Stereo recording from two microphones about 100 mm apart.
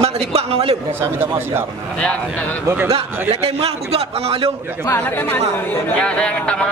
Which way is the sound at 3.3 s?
90° right.